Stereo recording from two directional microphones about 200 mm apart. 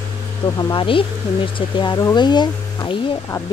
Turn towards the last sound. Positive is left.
turn(degrees=20)  # may be behind; listen again after turning